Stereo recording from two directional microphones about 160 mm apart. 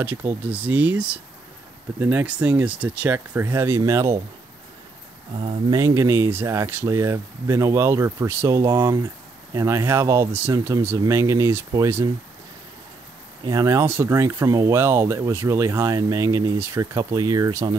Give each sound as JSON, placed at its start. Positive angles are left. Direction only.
{"t": 0.0, "sound": "speech", "side_deg": -10}
{"t": 5.7, "sound": "speech", "side_deg": -20}
{"t": 13.5, "sound": "speech", "side_deg": -20}